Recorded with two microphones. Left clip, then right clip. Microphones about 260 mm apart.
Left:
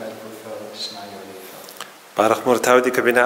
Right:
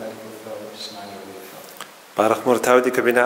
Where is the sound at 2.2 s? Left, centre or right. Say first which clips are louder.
Left 1 dB; centre.